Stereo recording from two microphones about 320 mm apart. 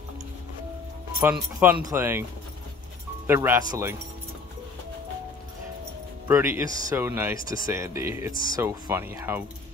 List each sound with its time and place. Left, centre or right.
1.2 s speech: centre
3.3 s speech: centre
6.2 s speech: centre
8.3 s speech: left
8.5 s speech: centre